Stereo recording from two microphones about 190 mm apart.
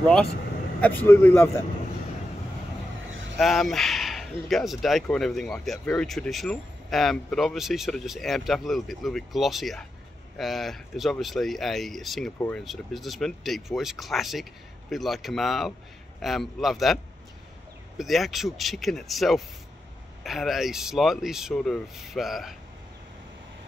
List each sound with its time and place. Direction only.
0.7 s a man's voice: 10° left (ahead or behind)
3.1 s vehicle: 85° right
3.3 s a man's voice: centre (ahead or behind)